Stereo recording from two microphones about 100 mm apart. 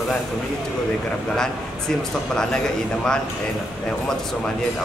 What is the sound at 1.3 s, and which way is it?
A man's voice, 5° left (ahead or behind).